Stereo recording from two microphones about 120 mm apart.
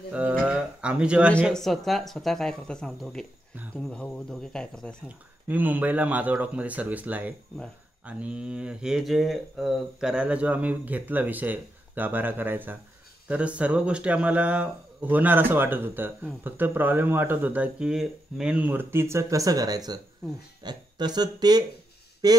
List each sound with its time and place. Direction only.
0.1 s a sound: 10° right (ahead or behind)
1.5 s speech: 5° left (ahead or behind)
5.0 s speech: 15° right (ahead or behind); by 22.4 s 30° right (ahead or behind)